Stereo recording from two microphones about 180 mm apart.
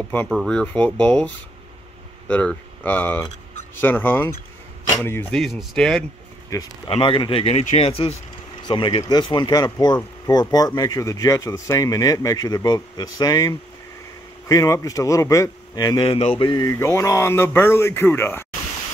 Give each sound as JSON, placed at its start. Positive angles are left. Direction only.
{"t": 0.3, "sound": "a man's voice", "side_deg": 0}
{"t": 5.4, "sound": "speech", "side_deg": 0}
{"t": 6.5, "sound": "a man's voice", "side_deg": 20}